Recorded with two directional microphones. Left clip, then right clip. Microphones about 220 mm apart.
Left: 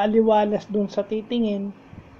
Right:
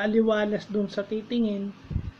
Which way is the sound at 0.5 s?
25° left (ahead or behind).